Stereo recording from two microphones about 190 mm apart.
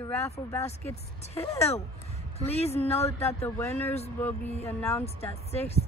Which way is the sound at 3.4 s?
10° left (ahead or behind).